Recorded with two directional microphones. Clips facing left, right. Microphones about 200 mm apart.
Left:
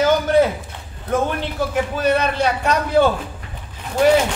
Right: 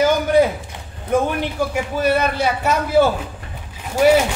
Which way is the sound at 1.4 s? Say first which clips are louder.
Even; 10° right (ahead or behind).